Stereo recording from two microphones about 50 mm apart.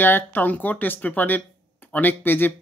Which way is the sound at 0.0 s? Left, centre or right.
Left.